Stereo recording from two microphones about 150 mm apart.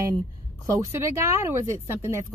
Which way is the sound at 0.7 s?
20° right (ahead or behind).